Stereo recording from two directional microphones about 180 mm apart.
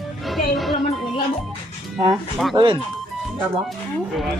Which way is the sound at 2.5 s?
30° right (ahead or behind).